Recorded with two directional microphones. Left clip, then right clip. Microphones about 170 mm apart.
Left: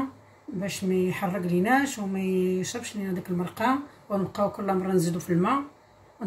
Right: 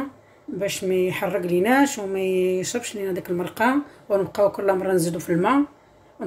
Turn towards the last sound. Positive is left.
turn(degrees=-60)  # may be behind; listen again after turning